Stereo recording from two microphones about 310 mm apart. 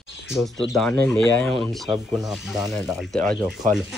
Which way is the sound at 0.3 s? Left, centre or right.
Centre.